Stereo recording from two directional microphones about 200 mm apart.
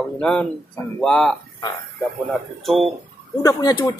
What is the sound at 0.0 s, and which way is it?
Speech, 5° left (ahead or behind).